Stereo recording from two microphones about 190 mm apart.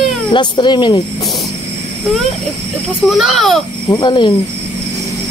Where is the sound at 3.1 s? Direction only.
Centre (ahead or behind).